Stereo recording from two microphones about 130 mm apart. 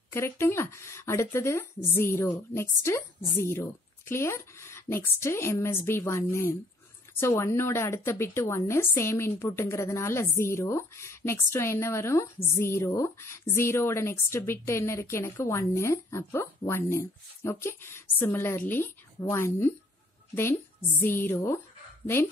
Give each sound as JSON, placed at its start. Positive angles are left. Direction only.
{"t": 0.1, "sound": "speech", "side_deg": 20}
{"t": 21.0, "sound": "speech", "side_deg": 20}